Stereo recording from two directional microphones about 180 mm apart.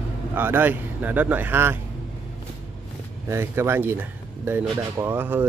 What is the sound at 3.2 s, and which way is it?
Speech, 15° right (ahead or behind).